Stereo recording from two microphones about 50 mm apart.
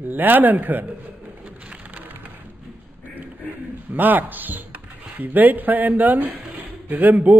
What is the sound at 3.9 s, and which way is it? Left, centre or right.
Speech, right.